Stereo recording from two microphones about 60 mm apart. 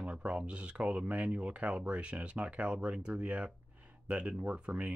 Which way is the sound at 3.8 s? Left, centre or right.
Centre.